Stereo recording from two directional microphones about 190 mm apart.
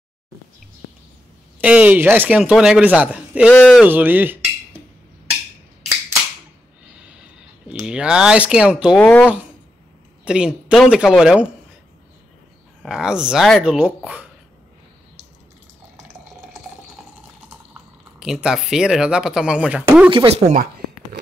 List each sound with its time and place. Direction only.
1.6 s a man's voice: 10° right (ahead or behind)
3.5 s speech: 5° left (ahead or behind)
3.8 s a man's voice: 10° right (ahead or behind)
7.0 s a sound: 5° right (ahead or behind)
7.8 s speech: 5° right (ahead or behind)
9.0 s speech: 10° left (ahead or behind)
10.2 s speech: 5° right (ahead or behind)
12.8 s speech: 5° right (ahead or behind)
18.2 s speech: 5° right (ahead or behind)
20.1 s speech: 30° right (ahead or behind)